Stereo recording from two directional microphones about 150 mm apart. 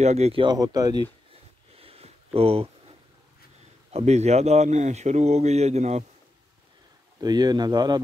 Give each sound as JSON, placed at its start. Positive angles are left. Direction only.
{"t": 0.0, "sound": "speech", "side_deg": -45}
{"t": 1.8, "sound": "a sound", "side_deg": -40}
{"t": 3.9, "sound": "speech", "side_deg": -45}
{"t": 7.2, "sound": "speech", "side_deg": -25}